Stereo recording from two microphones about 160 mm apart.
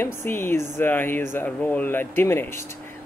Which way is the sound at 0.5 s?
50° right (ahead or behind).